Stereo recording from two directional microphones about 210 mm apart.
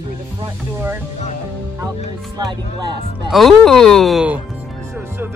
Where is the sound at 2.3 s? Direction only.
20° right (ahead or behind).